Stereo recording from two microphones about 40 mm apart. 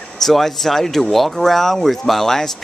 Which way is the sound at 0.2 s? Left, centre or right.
Centre.